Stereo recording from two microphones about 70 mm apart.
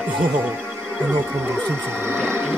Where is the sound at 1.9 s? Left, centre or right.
Right.